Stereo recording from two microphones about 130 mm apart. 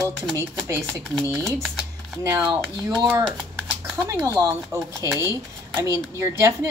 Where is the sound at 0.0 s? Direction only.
25° right (ahead or behind).